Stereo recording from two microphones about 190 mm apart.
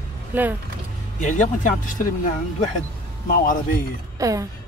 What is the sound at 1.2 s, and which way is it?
Speech, 45° left (ahead or behind).